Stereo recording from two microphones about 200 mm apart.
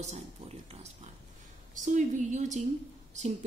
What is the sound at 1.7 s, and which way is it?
Speech, 40° right (ahead or behind).